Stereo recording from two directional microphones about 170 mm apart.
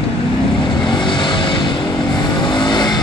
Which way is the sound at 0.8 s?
25° left (ahead or behind).